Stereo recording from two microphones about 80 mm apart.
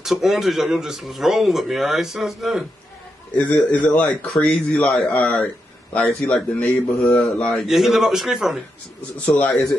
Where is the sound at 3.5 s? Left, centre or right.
Centre.